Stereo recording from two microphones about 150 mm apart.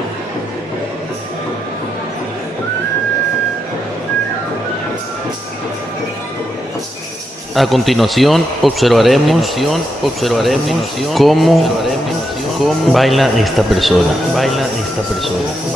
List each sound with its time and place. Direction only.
7.5 s speech: centre (ahead or behind)